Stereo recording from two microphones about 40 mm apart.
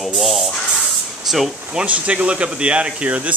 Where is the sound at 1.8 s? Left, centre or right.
Right.